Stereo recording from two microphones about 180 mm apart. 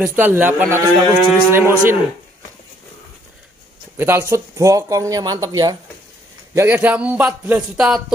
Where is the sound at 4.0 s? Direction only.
15° right (ahead or behind).